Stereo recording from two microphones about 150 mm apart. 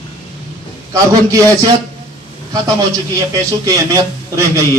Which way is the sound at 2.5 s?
25° right (ahead or behind).